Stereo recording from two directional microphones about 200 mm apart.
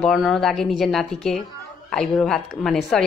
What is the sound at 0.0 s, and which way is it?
A woman's voice, centre (ahead or behind).